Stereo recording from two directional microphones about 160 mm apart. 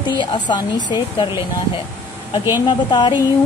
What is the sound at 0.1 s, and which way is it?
Speech, 30° left (ahead or behind).